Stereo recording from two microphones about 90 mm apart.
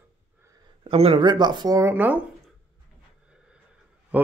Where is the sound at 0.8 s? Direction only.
85° right; by 1.8 s 55° right (ahead or behind).